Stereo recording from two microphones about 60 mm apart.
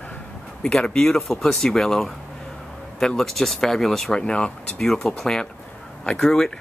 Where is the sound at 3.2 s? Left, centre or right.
Centre.